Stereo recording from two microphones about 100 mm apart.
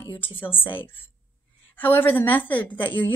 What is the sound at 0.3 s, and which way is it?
A woman's voice, 20° left (ahead or behind).